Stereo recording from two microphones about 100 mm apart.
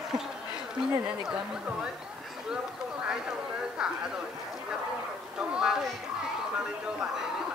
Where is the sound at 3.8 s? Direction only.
5° right (ahead or behind).